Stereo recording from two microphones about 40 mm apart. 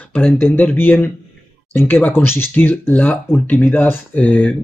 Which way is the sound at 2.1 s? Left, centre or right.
Left.